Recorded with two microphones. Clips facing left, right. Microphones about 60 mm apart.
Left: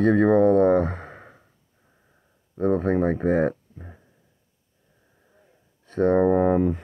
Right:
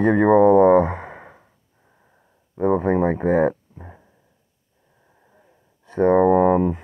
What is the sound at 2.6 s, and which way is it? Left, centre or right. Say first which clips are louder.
Speech: right 3 dB; centre.